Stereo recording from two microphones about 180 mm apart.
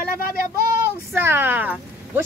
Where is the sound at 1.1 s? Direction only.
10° right (ahead or behind).